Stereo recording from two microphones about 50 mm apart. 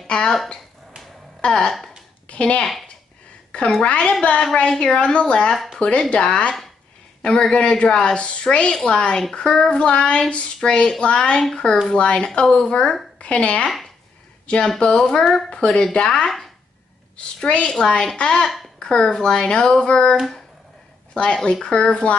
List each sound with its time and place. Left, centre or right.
0.0 s a sound: centre
1.4 s a woman's voice: centre
2.6 s speech: centre
3.8 s a woman's voice: left
13.7 s a sound: centre
15.0 s a woman's voice: centre
15.5 s speech: centre
16.3 s speech: centre
17.4 s a woman's voice: centre
21.1 s a woman's voice: centre